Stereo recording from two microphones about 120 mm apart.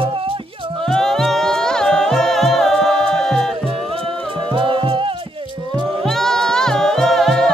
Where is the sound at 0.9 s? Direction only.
5° left (ahead or behind).